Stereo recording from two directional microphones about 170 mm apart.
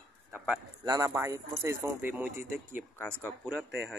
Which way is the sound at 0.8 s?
20° right (ahead or behind).